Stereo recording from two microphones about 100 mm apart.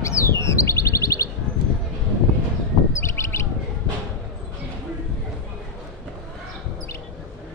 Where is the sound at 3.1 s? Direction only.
25° left (ahead or behind).